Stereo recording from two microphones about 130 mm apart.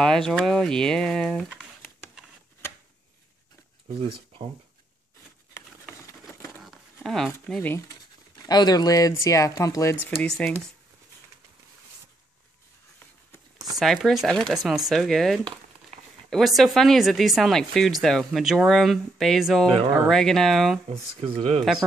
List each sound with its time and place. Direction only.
0.0 s speech: 5° left (ahead or behind)
4.0 s speech: 50° right (ahead or behind)
6.6 s a sound: centre (ahead or behind)
7.4 s speech: 5° left (ahead or behind)
8.5 s speech: 30° left (ahead or behind); by 10.5 s 5° left (ahead or behind)
13.7 s speech: centre (ahead or behind)
20.9 s speech: 50° right (ahead or behind)